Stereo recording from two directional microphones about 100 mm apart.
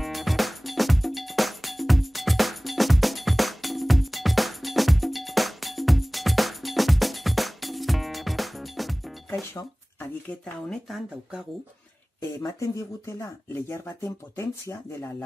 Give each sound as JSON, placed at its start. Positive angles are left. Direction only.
{"t": 0.0, "sound": "music", "side_deg": 0}
{"t": 9.4, "sound": "dishes", "side_deg": 0}
{"t": 10.4, "sound": "speech", "side_deg": 5}
{"t": 12.4, "sound": "speech", "side_deg": 35}